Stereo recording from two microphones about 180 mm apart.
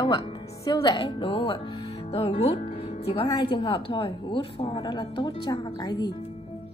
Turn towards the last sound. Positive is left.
turn(degrees=20)  # may be behind; listen again after turning